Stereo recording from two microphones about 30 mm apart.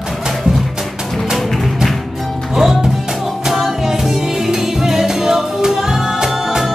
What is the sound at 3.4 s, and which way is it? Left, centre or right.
Music, centre.